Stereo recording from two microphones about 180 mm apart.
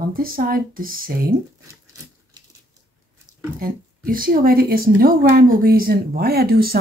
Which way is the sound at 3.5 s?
50° right (ahead or behind).